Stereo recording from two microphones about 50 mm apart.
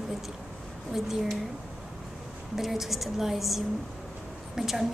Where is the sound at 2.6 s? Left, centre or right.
Centre.